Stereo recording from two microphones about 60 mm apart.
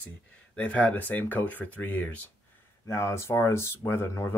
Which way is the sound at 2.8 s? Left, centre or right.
Left.